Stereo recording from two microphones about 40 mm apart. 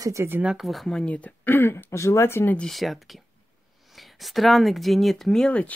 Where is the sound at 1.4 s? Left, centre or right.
Left.